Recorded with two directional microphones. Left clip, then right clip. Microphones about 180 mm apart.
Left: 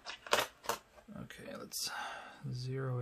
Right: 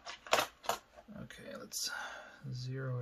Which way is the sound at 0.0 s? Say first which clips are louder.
Right 1 dB; 10° left (ahead or behind).